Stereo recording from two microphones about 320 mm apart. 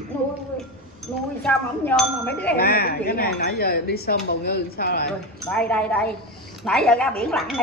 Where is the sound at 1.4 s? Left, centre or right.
Centre.